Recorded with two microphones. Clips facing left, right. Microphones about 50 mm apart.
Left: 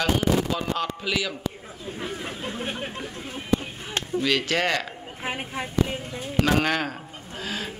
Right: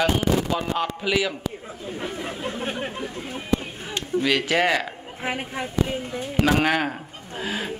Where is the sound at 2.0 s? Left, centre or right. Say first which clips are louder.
Right 2 dB; right.